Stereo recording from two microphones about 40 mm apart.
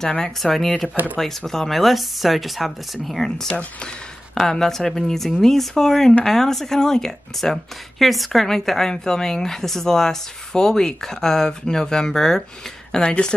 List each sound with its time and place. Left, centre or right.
0.4 s speech: centre
3.4 s speech: left
4.4 s a woman's voice: centre
7.5 s a woman's voice: centre